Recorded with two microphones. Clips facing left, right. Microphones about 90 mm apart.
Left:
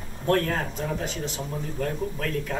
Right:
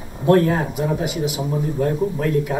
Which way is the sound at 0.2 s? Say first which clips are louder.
Right 8 dB; 15° right (ahead or behind).